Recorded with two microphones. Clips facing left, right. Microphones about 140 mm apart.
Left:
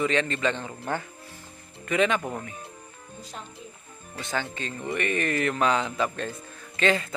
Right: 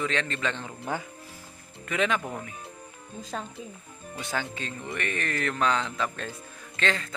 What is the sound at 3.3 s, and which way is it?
Speech, 90° right.